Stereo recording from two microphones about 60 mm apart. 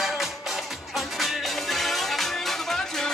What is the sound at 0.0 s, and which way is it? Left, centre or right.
Music, centre.